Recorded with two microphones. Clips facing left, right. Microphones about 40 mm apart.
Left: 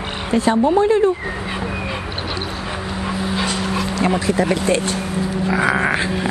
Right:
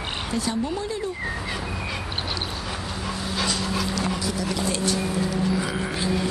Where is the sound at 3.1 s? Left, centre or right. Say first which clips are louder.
Left 5 dB; left.